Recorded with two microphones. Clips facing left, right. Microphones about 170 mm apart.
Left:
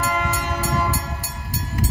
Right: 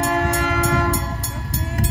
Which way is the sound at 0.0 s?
65° right (ahead or behind).